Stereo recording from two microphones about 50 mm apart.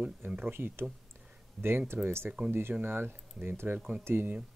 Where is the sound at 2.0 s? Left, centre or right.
Right.